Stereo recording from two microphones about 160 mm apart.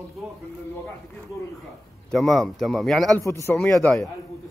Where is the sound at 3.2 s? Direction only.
15° left (ahead or behind); by 4.1 s centre (ahead or behind).